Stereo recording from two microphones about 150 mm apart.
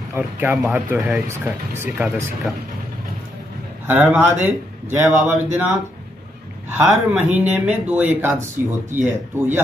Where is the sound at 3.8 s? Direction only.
10° right (ahead or behind).